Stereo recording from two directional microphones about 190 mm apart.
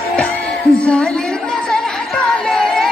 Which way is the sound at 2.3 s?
Centre (ahead or behind).